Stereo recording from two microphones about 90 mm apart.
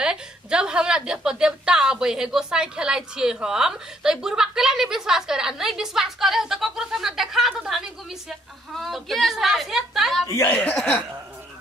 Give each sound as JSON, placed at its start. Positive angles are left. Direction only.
{"t": 0.0, "sound": "a woman's voice", "side_deg": -10}
{"t": 10.4, "sound": "speech", "side_deg": 20}